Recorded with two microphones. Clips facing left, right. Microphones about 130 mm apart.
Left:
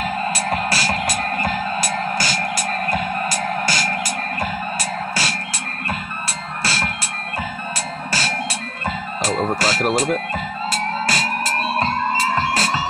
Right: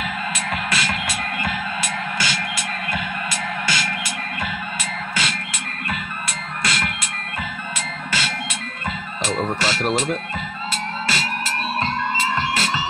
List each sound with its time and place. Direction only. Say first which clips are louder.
0.0 s music: left 5 dB; 35° left (ahead or behind)
6.6 s music: left 1 dB; 35° left (ahead or behind)
8.1 s music: left 2 dB; 35° left (ahead or behind)
9.9 s speech: left 3 dB; 40° left (ahead or behind)
10.7 s music: left 4 dB; 40° left (ahead or behind)